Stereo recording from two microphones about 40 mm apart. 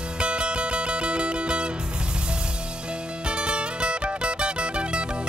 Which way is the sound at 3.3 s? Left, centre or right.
Right.